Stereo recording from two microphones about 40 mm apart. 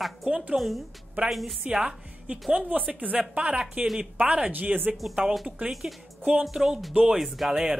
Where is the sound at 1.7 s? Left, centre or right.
Right.